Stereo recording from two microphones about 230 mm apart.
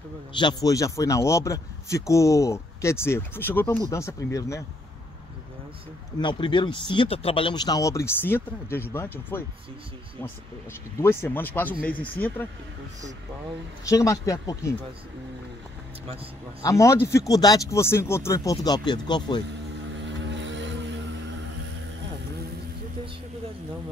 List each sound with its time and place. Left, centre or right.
0.4 s a man's voice: centre
6.1 s a man's voice: left
11.0 s a man's voice: centre
13.8 s a man's voice: centre
16.6 s a man's voice: centre
20.0 s vehicle: right